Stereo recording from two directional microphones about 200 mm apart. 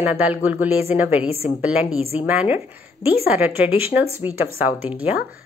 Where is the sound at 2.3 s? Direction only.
10° right (ahead or behind).